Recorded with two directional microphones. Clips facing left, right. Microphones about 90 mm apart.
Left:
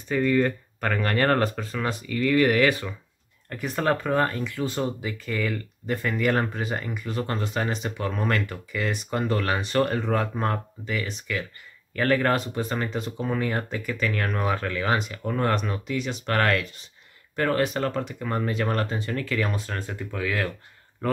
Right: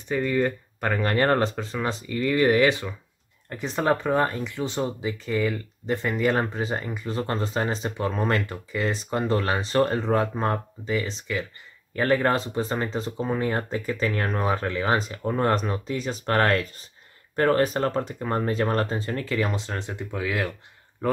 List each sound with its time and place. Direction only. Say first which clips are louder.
0.1 s speech: left 2 dB; 15° right (ahead or behind)